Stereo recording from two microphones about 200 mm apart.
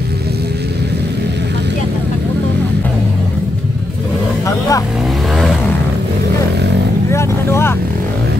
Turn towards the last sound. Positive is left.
turn(degrees=10)  # may be behind; listen again after turning